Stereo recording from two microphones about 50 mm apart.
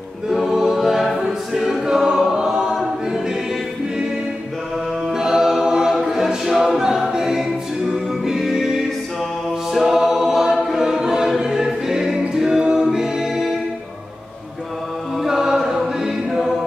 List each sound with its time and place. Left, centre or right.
0.3 s choir: centre
5.1 s a capella: centre
7.9 s music: centre
9.7 s choir: centre
15.2 s a capella: centre